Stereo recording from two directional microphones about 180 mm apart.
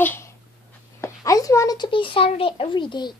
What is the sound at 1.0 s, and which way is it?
A child's voice, 20° left (ahead or behind).